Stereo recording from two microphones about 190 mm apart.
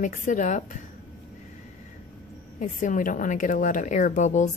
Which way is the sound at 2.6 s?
45° left (ahead or behind).